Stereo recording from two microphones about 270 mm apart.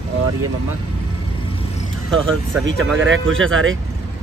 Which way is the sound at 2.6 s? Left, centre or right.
Right.